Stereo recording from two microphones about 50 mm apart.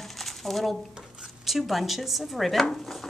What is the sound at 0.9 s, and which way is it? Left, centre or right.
Speech, centre.